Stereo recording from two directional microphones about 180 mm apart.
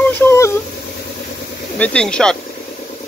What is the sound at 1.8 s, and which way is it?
Speech, 5° left (ahead or behind).